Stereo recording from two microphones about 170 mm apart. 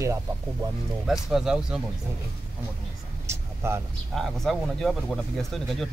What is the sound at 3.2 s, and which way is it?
Vehicle, 15° right (ahead or behind).